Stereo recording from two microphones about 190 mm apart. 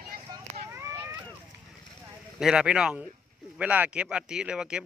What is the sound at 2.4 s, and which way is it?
A man's voice, 5° right (ahead or behind).